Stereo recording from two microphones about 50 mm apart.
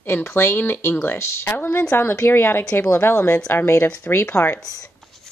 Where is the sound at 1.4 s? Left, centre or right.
Left.